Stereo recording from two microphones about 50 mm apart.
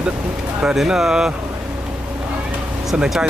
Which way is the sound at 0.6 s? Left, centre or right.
Centre.